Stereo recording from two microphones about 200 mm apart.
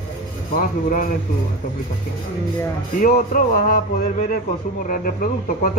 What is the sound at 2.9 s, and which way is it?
A man's voice, 45° left (ahead or behind).